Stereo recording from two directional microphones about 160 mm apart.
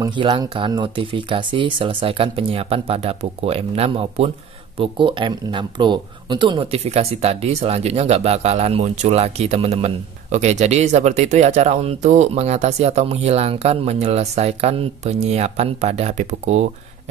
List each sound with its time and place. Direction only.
0.0 s speech: 25° right (ahead or behind); by 16.6 s 45° right (ahead or behind)